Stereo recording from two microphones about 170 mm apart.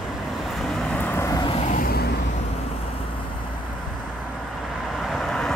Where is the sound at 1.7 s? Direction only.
60° left (ahead or behind).